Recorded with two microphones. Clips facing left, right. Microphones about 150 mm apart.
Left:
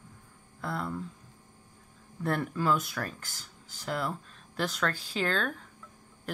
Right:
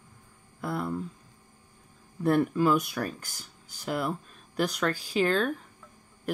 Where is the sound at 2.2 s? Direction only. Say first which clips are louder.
Right 7 dB; 20° right (ahead or behind).